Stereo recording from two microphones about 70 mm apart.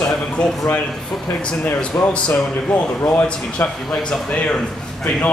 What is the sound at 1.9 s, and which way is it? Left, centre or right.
Speech, left.